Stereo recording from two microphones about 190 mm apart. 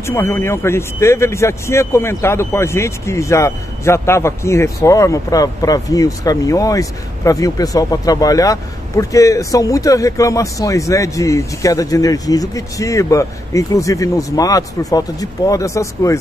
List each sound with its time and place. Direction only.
0.0 s speech: 15° left (ahead or behind)